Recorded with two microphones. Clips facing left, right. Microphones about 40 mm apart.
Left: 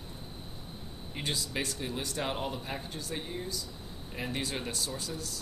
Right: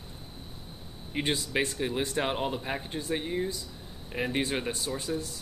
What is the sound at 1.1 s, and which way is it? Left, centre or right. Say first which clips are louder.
Speech: right 6 dB; right.